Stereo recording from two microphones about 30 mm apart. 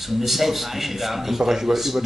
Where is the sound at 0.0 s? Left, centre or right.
Centre.